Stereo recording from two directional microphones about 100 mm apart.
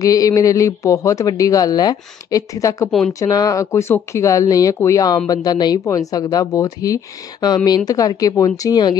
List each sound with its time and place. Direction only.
0.0 s speech: 35° left (ahead or behind)